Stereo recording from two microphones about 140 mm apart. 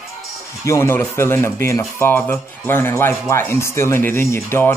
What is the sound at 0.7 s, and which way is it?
Speech, 20° left (ahead or behind).